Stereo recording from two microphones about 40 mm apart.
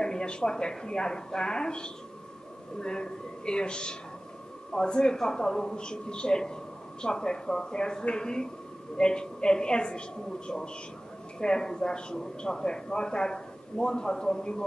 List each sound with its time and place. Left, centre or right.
0.0 s a man's voice: centre